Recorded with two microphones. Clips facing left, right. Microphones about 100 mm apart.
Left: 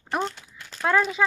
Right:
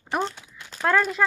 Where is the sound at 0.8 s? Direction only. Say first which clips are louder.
Even; centre (ahead or behind).